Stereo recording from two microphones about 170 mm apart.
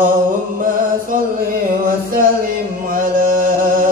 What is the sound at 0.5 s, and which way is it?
Music, 55° right (ahead or behind).